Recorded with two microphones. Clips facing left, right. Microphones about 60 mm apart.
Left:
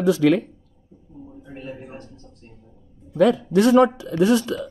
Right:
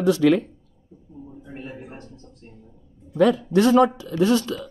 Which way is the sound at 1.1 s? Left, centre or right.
Centre.